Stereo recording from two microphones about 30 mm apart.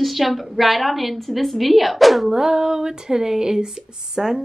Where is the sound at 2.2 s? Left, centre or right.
Centre.